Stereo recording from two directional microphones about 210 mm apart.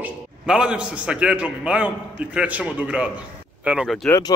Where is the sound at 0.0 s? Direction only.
5° right (ahead or behind).